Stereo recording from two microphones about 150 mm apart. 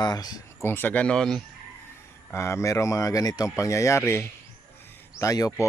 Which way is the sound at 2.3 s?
20° left (ahead or behind).